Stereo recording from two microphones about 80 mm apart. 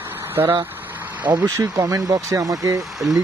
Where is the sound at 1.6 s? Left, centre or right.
Right.